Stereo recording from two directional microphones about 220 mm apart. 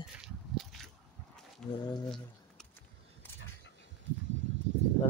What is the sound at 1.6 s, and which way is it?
Speech, 5° left (ahead or behind).